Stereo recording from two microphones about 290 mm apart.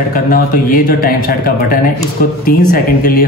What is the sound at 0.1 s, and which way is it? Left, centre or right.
Speech, left.